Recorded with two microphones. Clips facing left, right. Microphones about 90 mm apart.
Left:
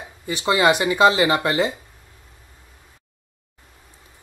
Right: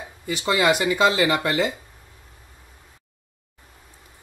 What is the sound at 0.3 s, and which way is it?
Speech, 20° left (ahead or behind).